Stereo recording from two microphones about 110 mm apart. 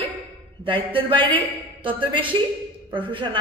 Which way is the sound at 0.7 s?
50° right (ahead or behind).